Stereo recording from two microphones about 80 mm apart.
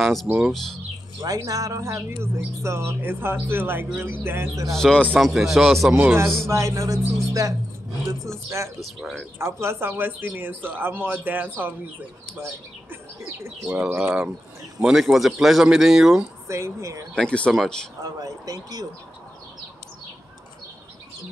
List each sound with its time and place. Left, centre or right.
0.0 s speech: centre
1.2 s speech: right
4.6 s speech: centre
5.2 s speech: centre
6.5 s speech: right
8.7 s speech: centre
9.4 s speech: right
13.7 s speech: right
14.0 s speech: centre
16.4 s speech: right
17.1 s speech: centre
18.0 s speech: right